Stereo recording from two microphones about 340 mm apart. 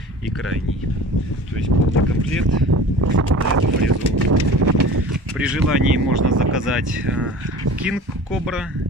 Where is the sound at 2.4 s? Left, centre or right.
Right.